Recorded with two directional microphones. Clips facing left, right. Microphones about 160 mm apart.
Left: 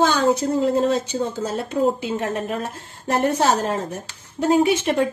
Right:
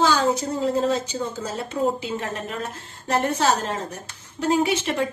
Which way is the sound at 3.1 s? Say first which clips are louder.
Left 2 dB; 55° left (ahead or behind).